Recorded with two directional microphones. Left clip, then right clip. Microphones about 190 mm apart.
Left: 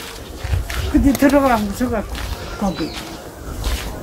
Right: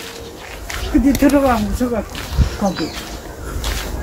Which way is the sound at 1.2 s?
25° left (ahead or behind).